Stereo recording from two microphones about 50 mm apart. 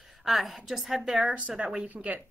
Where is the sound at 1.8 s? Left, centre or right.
Right.